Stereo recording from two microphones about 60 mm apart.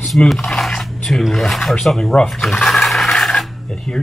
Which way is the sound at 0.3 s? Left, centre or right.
Centre.